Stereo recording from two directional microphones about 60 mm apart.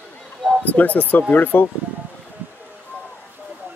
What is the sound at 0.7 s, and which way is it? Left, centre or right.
Speech, left.